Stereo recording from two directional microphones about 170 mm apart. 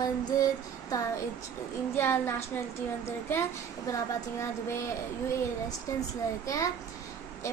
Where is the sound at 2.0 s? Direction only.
15° left (ahead or behind).